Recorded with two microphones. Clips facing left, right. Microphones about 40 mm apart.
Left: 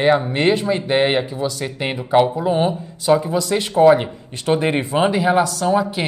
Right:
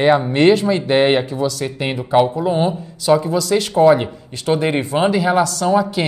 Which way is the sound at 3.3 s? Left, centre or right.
Left.